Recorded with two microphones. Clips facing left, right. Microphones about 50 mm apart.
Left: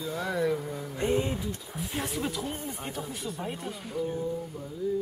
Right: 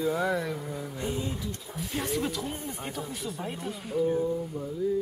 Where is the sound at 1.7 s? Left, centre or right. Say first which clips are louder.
Right 4 dB; centre.